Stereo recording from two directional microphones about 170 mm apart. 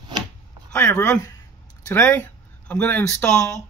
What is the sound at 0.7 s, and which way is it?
Speech, 15° left (ahead or behind).